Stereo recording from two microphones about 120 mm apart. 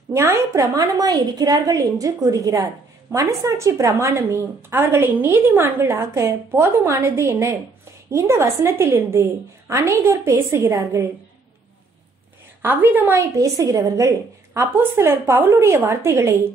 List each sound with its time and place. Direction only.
0.1 s a woman's voice: 25° right (ahead or behind)
12.6 s a woman's voice: 15° right (ahead or behind)